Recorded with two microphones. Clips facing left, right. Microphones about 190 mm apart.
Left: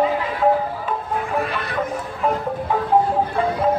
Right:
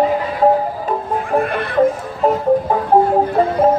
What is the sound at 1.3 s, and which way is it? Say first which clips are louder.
Music: right 11 dB; 50° right (ahead or behind).